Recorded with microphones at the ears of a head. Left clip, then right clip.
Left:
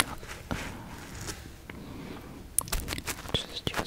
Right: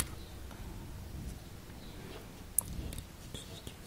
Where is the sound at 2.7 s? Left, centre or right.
Left.